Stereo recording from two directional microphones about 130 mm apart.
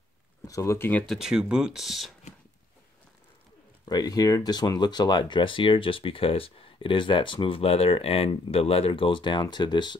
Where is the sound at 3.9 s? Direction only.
30° left (ahead or behind).